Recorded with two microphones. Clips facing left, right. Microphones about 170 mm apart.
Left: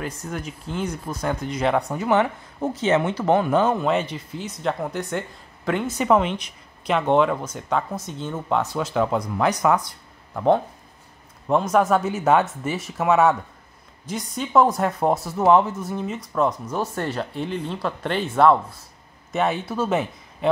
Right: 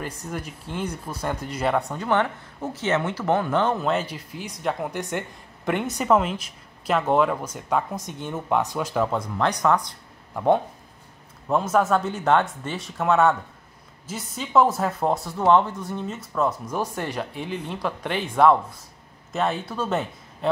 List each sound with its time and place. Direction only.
0.3 s speech: 5° right (ahead or behind)
2.0 s speech: 10° left (ahead or behind)
3.7 s speech: centre (ahead or behind); by 5.9 s 15° right (ahead or behind)
5.9 s speech: centre (ahead or behind)
8.9 s speech: centre (ahead or behind)
10.3 s speech: 10° right (ahead or behind)
19.3 s speech: centre (ahead or behind)